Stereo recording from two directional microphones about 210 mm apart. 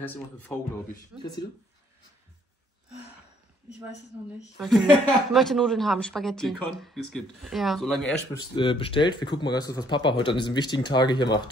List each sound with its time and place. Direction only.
0.0 s speech: 10° left (ahead or behind)
1.1 s speech: 10° right (ahead or behind)
4.6 s speech: centre (ahead or behind)
8.5 s speech: 25° left (ahead or behind)